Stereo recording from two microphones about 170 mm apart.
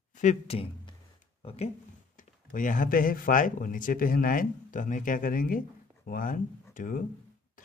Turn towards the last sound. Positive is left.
turn(degrees=50)  # may be behind; listen again after turning